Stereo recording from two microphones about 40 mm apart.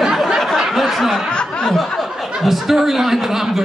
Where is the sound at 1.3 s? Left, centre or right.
Left.